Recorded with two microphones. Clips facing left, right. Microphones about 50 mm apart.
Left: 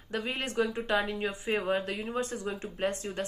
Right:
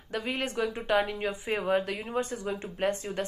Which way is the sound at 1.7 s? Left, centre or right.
Right.